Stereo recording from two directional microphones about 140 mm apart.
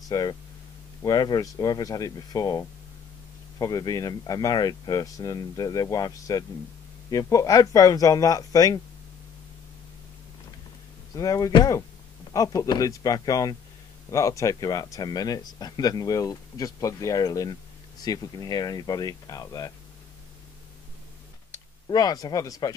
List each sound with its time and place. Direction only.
0.1 s speech: 25° left (ahead or behind)
11.1 s speech: 25° left (ahead or behind)
21.8 s speech: 25° left (ahead or behind)